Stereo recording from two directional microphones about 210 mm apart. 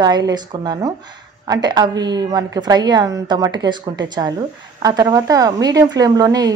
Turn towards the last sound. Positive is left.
turn(degrees=-20)  # may be behind; listen again after turning